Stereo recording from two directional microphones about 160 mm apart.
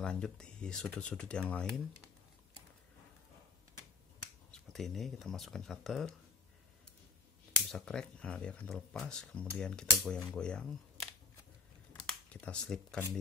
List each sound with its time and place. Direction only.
0.0 s speech: 5° left (ahead or behind)
4.5 s speech: centre (ahead or behind)
7.7 s speech: 5° left (ahead or behind)
11.9 s a sound: 10° left (ahead or behind)